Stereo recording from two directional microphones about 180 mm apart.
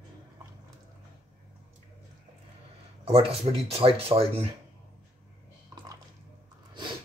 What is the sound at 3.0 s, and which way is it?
Speech, 35° right (ahead or behind).